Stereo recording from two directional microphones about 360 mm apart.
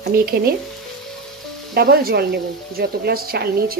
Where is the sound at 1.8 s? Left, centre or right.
Right.